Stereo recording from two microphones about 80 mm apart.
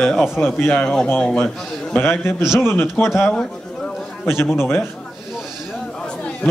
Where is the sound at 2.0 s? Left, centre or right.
Left.